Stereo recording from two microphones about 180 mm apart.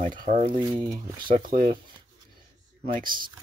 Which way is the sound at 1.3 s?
50° right (ahead or behind).